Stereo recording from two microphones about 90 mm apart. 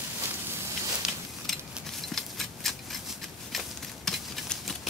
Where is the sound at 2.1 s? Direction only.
5° left (ahead or behind).